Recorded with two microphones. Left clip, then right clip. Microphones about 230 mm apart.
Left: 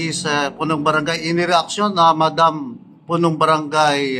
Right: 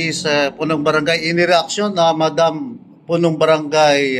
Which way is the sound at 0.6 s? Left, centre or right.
Left.